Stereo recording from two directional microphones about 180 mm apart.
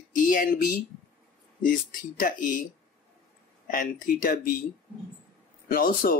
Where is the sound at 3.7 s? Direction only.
50° left (ahead or behind).